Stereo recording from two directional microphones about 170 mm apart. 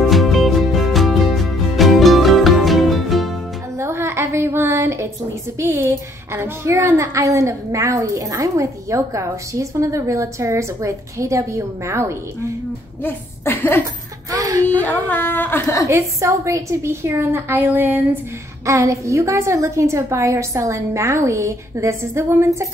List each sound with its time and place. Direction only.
0.1 s music: centre (ahead or behind)
3.7 s a sound: 15° right (ahead or behind)
5.6 s a woman's voice: 15° right (ahead or behind)
13.0 s a woman's voice: 15° left (ahead or behind)
14.3 s speech: 20° right (ahead or behind)
14.8 s a woman's voice: 10° left (ahead or behind)
15.9 s a woman's voice: 15° right (ahead or behind)